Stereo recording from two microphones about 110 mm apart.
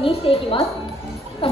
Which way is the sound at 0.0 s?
60° left (ahead or behind).